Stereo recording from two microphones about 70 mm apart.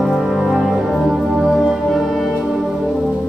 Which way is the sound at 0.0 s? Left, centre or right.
Centre.